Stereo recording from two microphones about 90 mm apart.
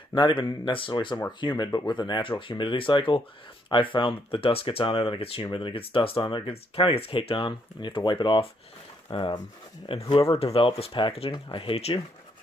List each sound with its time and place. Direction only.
0.1 s speech: 65° left (ahead or behind)
1.4 s speech: 55° left (ahead or behind); by 5.4 s 90° left
5.5 s speech: 70° left (ahead or behind)
9.9 s speech: 75° left (ahead or behind); by 11.4 s 90° left
11.5 s speech: 80° left